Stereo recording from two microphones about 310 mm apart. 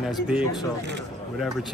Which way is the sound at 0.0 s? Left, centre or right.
Centre.